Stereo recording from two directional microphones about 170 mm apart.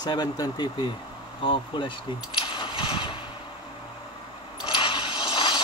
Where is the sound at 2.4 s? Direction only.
30° left (ahead or behind).